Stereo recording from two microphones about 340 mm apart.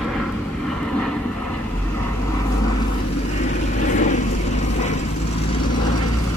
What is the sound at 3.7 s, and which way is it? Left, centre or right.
Vehicle, left.